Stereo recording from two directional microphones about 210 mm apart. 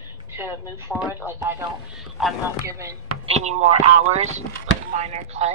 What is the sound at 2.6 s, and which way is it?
Speech, 15° right (ahead or behind).